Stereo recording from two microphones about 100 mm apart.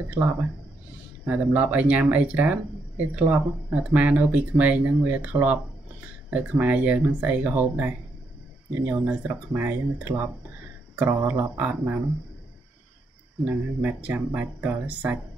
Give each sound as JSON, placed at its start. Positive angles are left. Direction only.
{"t": 1.2, "sound": "speech", "side_deg": -15}
{"t": 13.5, "sound": "speech", "side_deg": -15}